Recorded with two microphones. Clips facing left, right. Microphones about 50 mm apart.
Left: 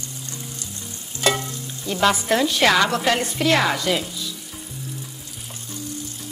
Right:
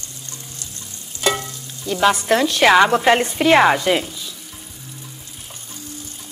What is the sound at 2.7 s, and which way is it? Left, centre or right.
Speech, right.